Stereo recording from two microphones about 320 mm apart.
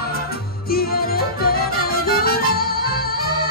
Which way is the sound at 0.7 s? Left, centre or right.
Left.